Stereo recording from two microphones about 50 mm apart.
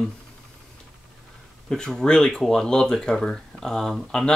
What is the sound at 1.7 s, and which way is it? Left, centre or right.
Speech, centre.